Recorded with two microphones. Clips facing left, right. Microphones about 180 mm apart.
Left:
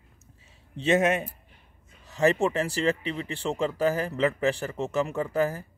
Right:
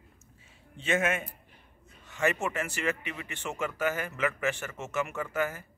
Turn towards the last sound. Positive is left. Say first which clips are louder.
# left 6 dB
turn(degrees=35)  # may be behind; listen again after turning